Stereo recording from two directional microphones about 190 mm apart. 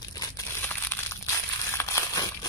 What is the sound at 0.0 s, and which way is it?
Crumpling, 20° left (ahead or behind).